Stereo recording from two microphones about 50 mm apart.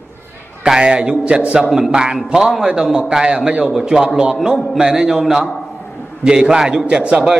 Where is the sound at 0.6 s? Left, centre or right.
Centre.